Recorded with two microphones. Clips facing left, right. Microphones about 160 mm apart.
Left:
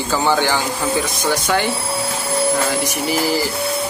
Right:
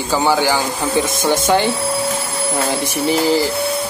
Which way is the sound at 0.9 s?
25° right (ahead or behind).